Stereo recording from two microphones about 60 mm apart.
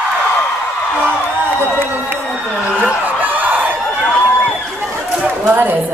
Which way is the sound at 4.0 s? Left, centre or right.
Centre.